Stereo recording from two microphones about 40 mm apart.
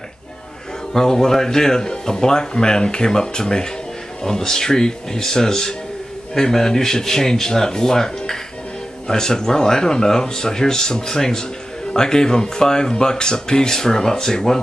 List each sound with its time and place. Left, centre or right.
0.9 s speech: centre